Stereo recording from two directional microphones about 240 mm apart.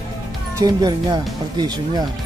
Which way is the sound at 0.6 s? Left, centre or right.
Centre.